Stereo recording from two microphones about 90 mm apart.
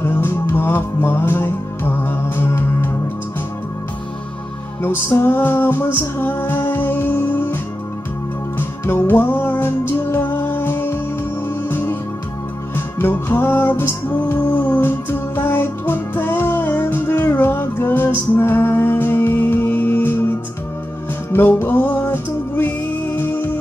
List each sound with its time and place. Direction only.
0.0 s music: 25° left (ahead or behind)
4.8 s music: 25° left (ahead or behind)
8.5 s music: 25° left (ahead or behind)